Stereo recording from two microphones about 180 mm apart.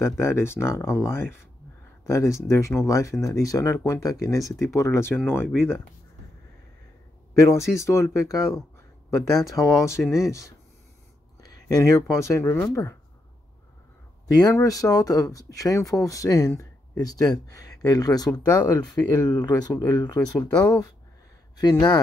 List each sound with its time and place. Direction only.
0.0 s speech: 15° left (ahead or behind)
7.5 s speech: 15° left (ahead or behind)
10.0 s speech: centre (ahead or behind)
11.5 s speech: 15° left (ahead or behind)
14.2 s speech: 20° left (ahead or behind)
20.5 s speech: 5° left (ahead or behind)
21.5 s speech: 20° left (ahead or behind)